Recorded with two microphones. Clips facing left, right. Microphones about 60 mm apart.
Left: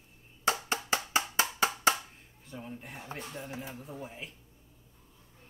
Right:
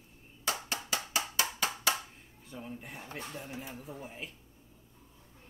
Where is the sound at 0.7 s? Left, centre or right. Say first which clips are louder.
Left 5 dB; left.